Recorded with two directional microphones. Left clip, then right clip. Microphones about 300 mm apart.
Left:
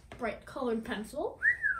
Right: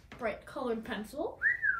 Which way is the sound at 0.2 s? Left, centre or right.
Centre.